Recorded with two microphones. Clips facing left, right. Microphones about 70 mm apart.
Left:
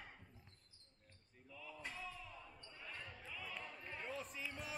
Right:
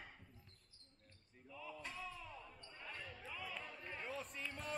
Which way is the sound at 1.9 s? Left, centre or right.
Centre.